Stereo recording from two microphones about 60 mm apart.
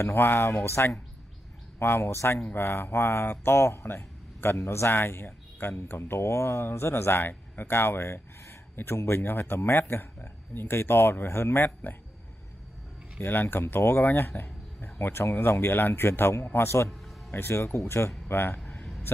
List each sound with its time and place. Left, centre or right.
0.0 s speech: left
13.2 s speech: left
18.6 s a sound: centre